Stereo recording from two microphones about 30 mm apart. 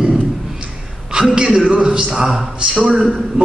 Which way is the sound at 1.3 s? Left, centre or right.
Right.